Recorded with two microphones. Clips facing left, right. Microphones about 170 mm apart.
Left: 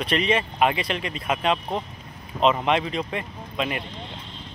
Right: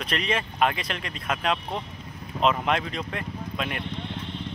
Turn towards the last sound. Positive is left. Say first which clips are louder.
# left 3 dB
turn(degrees=5)  # may be behind; listen again after turning